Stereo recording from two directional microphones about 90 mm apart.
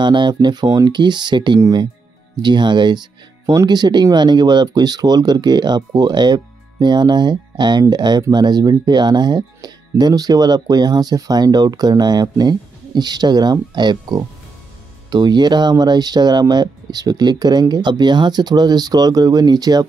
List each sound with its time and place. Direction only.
0.0 s speech: 60° right (ahead or behind)